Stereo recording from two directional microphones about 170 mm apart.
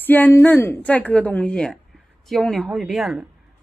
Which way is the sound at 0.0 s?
10° left (ahead or behind).